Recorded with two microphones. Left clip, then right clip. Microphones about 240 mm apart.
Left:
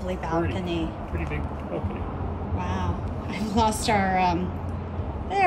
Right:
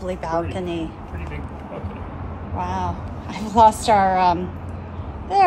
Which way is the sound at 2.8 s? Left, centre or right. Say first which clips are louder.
Right 4 dB; centre.